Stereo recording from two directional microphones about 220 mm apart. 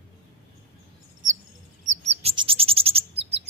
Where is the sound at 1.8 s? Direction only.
30° right (ahead or behind).